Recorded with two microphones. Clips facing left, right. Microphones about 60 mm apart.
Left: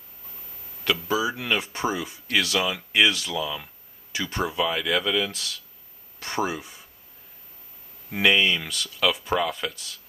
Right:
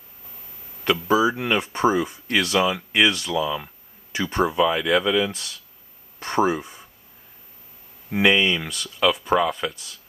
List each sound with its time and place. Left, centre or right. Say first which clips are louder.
1.0 s speech: right 9 dB; right; by 3.7 s centre
4.1 s speech: right 5 dB; right
4.6 s speech: right 4 dB; centre
6.1 s a sound: right 6 dB; right
8.1 s speech: right 2 dB; centre